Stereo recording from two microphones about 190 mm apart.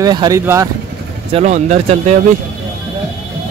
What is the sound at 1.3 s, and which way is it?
Speech, 35° right (ahead or behind).